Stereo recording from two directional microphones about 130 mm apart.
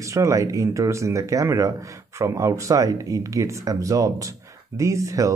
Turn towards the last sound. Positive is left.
turn(degrees=-25)  # may be behind; listen again after turning